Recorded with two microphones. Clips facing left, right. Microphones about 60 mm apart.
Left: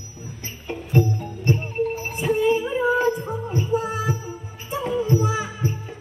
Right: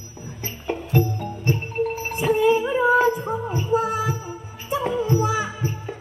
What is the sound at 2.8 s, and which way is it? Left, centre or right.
Music, right.